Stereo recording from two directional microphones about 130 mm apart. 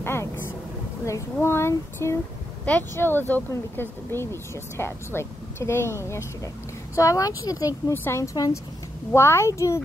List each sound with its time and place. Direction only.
0.0 s vehicle: 20° left (ahead or behind)
1.0 s speech: 20° left (ahead or behind)